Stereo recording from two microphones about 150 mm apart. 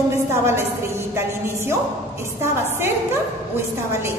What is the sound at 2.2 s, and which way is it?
Speech, 15° right (ahead or behind).